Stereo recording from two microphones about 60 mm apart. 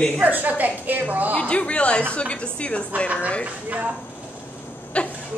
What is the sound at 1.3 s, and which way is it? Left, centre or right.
Speech, left.